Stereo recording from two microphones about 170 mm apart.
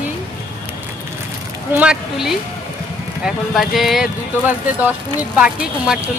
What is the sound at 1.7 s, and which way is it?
Speech, 5° right (ahead or behind).